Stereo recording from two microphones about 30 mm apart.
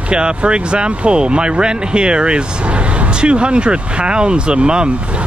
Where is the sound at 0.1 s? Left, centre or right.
Right.